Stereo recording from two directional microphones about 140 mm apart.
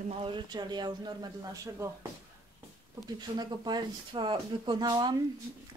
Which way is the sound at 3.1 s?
30° right (ahead or behind).